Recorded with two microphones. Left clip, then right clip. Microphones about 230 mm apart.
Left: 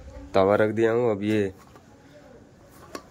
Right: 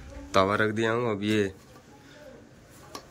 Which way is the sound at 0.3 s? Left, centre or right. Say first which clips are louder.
Left 4 dB; centre.